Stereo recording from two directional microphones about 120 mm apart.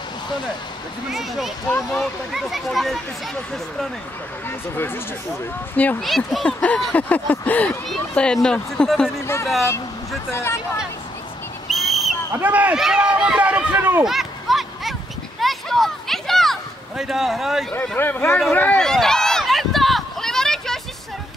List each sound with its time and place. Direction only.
1.9 s speech: centre (ahead or behind)
4.5 s speech: 20° left (ahead or behind)
5.9 s speech: centre (ahead or behind)
6.6 s a sound: 10° left (ahead or behind)
8.1 s speech: 10° left (ahead or behind)
9.2 s speech: 20° left (ahead or behind)
11.7 s basketball bounce: centre (ahead or behind)
12.4 s speech: 15° right (ahead or behind)
14.0 s a sound: centre (ahead or behind)
17.9 s a sound: 15° left (ahead or behind)